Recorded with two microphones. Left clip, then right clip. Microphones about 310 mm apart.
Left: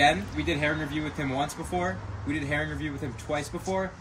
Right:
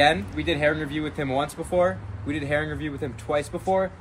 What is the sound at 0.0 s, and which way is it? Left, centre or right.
Speech, centre.